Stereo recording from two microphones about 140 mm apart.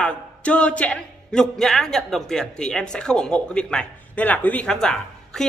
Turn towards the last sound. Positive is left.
turn(degrees=5)  # may be behind; listen again after turning